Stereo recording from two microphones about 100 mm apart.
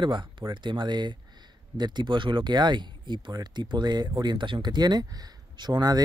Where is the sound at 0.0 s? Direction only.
50° right (ahead or behind).